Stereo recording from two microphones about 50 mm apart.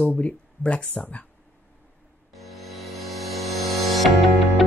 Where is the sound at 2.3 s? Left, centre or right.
Centre.